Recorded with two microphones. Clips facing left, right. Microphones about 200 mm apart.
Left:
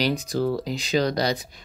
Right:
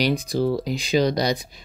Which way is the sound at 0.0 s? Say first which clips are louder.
Right 2 dB; 10° right (ahead or behind).